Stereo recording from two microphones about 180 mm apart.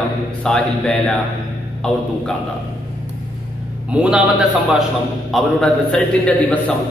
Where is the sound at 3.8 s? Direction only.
5° right (ahead or behind).